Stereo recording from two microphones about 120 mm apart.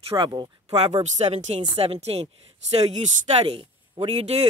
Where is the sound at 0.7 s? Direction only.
60° right (ahead or behind).